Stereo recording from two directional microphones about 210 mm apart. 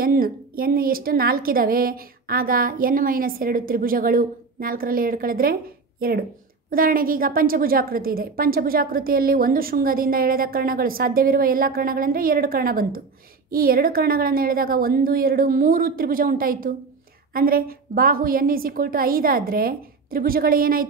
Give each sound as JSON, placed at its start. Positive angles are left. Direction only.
{"t": 0.0, "sound": "a woman's voice", "side_deg": -45}